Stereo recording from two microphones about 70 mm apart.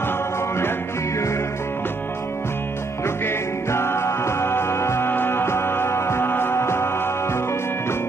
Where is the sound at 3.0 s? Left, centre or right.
Left.